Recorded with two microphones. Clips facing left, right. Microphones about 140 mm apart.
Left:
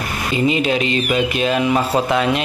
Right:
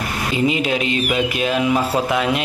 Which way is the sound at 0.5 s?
10° right (ahead or behind).